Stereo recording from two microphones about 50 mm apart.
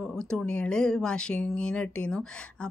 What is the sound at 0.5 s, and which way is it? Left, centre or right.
A woman's voice, centre.